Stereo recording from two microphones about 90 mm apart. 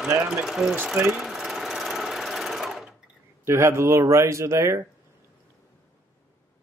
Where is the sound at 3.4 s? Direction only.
30° right (ahead or behind).